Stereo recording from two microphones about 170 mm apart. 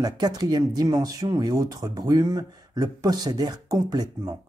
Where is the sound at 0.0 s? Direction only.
25° right (ahead or behind).